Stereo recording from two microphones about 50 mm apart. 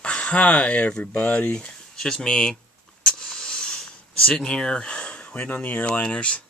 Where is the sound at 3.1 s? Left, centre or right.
Centre; by 5.9 s left.